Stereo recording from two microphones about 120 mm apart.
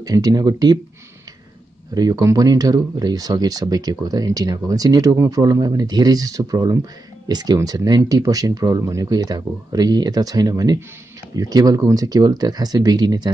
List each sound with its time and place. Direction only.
0.0 s speech: 35° right (ahead or behind)
2.0 s speech: 30° right (ahead or behind)